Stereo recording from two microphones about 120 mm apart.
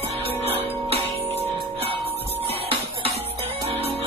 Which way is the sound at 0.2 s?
55° right (ahead or behind).